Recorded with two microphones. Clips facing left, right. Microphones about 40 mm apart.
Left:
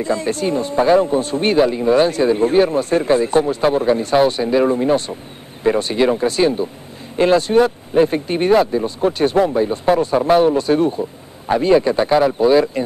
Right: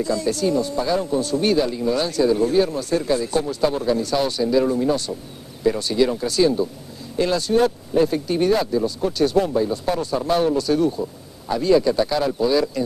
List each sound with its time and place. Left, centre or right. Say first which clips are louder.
0.0 s speech: left 2 dB; left